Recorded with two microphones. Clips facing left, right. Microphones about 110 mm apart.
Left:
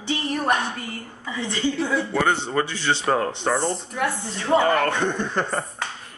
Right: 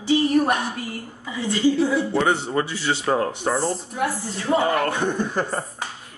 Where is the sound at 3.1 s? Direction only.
5° right (ahead or behind).